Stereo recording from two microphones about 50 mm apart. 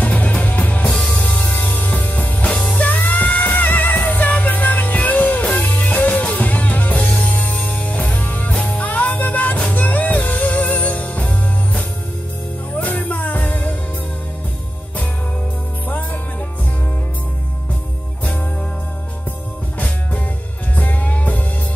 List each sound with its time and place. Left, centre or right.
0.0 s music: left
0.8 s music: left
15.9 s music: left
20.7 s music: left